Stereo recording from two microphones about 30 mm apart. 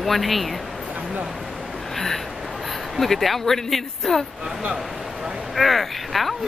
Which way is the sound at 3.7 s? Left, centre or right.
Centre.